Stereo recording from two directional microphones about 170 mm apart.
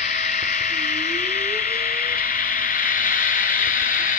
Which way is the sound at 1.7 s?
60° left (ahead or behind).